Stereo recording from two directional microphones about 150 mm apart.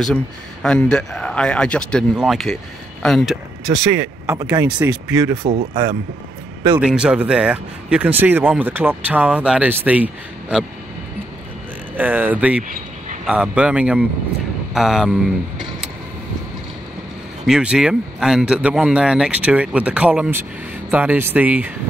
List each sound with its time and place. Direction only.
0.0 s speech: 5° left (ahead or behind)
3.0 s a sound: centre (ahead or behind)
4.3 s speech: 20° right (ahead or behind)
4.6 s speech: 10° right (ahead or behind)
5.4 s speech: 45° right (ahead or behind)
6.8 s speech: 5° right (ahead or behind)
12.0 s speech: 10° right (ahead or behind)
17.5 s speech: 5° right (ahead or behind)